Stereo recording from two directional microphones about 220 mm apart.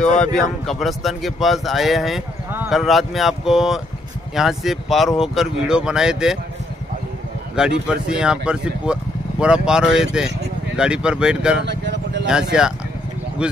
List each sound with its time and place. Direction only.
0.2 s speech: 5° left (ahead or behind)
7.6 s speech: 5° right (ahead or behind)
11.6 s vehicle: 50° right (ahead or behind)
12.3 s speech: 5° right (ahead or behind)